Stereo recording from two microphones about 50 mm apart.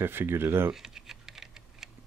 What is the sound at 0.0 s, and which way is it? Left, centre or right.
Speech, right.